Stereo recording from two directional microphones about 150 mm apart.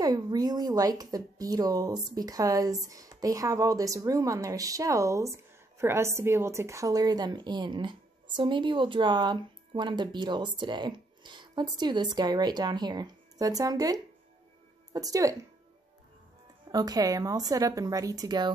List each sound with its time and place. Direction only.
0.0 s speech: 25° right (ahead or behind)
16.7 s speech: 25° right (ahead or behind)